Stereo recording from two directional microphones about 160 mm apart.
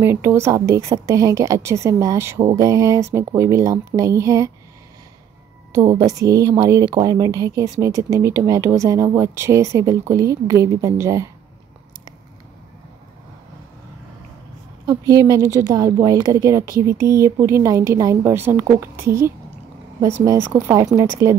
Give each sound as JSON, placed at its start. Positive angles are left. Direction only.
{"t": 0.0, "sound": "speech", "side_deg": -15}
{"t": 5.7, "sound": "speech", "side_deg": -25}
{"t": 14.9, "sound": "speech", "side_deg": -25}